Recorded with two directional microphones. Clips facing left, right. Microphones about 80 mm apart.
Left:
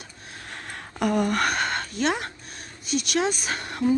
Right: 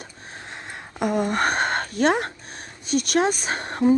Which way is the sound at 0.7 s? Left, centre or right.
Centre.